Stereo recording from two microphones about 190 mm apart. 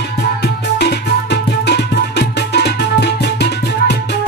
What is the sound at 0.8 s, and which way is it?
Music, 60° left (ahead or behind).